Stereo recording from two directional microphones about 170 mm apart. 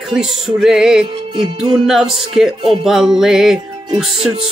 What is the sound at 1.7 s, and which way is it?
Music, 5° right (ahead or behind).